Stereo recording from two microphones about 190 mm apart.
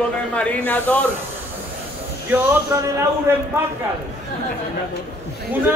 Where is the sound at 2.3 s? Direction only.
10° right (ahead or behind).